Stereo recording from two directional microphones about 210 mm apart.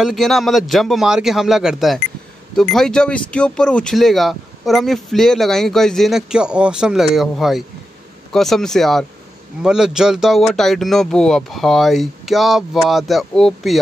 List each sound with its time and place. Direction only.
0.0 s speech: centre (ahead or behind)